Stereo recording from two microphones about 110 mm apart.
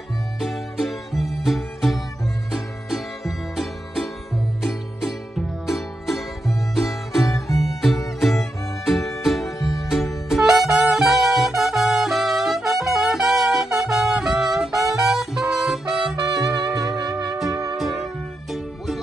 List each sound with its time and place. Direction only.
0.4 s music: centre (ahead or behind)
7.4 s guitar: centre (ahead or behind)
8.2 s music: centre (ahead or behind)
9.6 s music: 30° left (ahead or behind)
9.8 s music: centre (ahead or behind)